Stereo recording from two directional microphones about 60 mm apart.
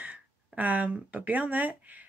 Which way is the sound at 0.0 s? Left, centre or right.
Right.